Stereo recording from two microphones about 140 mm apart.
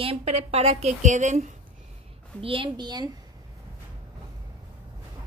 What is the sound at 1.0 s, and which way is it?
Speech, 60° right (ahead or behind).